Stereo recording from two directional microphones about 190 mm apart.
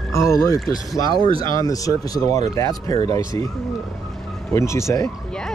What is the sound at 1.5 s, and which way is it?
Speech, 20° left (ahead or behind).